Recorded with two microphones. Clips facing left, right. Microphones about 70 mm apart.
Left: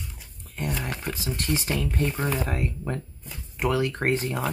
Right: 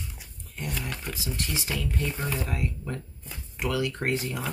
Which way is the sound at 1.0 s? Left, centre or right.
Left.